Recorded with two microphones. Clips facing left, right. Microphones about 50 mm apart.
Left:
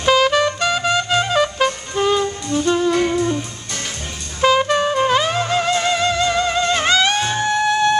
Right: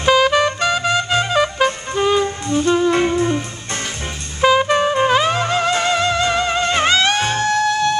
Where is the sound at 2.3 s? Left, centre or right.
Right.